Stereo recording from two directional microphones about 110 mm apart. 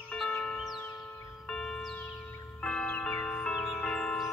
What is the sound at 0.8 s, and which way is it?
Music, 15° left (ahead or behind).